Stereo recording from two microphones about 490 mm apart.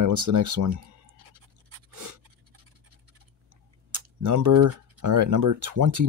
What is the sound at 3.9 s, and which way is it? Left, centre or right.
Speech, right.